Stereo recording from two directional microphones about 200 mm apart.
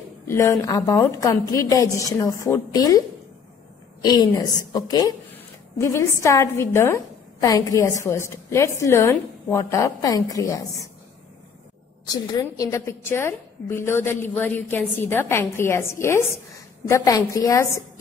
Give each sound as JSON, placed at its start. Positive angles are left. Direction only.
{"t": 0.3, "sound": "a woman's voice", "side_deg": 15}
{"t": 4.0, "sound": "a woman's voice", "side_deg": 20}
{"t": 5.3, "sound": "a sound", "side_deg": 15}
{"t": 6.2, "sound": "a woman's voice", "side_deg": 15}
{"t": 12.1, "sound": "a woman's voice", "side_deg": 20}